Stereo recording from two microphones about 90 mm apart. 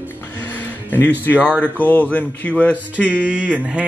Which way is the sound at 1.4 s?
15° right (ahead or behind).